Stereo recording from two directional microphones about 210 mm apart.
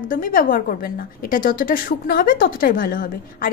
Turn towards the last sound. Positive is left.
turn(degrees=40)  # may be behind; listen again after turning